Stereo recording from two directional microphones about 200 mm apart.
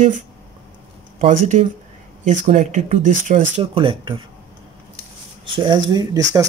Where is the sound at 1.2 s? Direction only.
35° right (ahead or behind).